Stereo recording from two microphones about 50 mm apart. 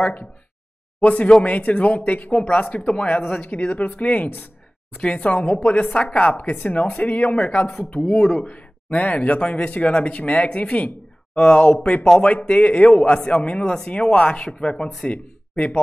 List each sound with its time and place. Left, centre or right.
0.0 s speech: left
4.9 s speech: left
7.6 s speech: centre